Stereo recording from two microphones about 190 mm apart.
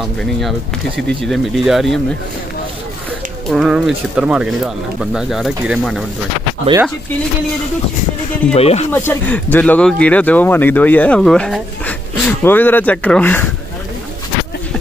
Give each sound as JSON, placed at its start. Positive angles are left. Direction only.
{"t": 0.2, "sound": "speech", "side_deg": 0}
{"t": 3.4, "sound": "speech", "side_deg": 0}
{"t": 6.7, "sound": "speech", "side_deg": -30}
{"t": 8.5, "sound": "speech", "side_deg": 35}
{"t": 8.9, "sound": "speech", "side_deg": 10}